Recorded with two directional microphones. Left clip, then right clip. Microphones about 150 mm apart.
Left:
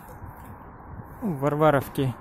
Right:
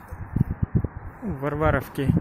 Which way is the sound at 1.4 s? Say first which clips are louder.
Left 3 dB; 25° left (ahead or behind).